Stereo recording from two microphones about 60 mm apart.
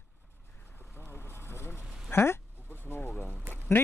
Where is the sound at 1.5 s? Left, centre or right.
Left.